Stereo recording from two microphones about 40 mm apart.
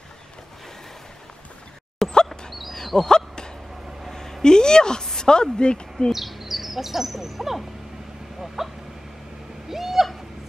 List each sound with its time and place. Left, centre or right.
2.0 s dog: centre
2.8 s a sound: centre
4.1 s a woman's voice: centre
6.1 s speech: centre
8.6 s a sound: centre
9.7 s owl: centre